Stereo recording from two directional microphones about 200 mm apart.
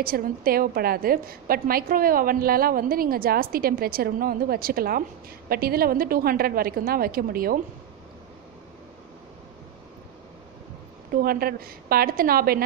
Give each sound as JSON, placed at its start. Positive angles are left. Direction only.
{"t": 0.0, "sound": "a woman's voice", "side_deg": -45}
{"t": 11.2, "sound": "a woman's voice", "side_deg": -50}